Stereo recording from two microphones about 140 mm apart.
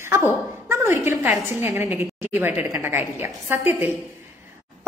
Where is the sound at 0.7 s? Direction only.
20° right (ahead or behind).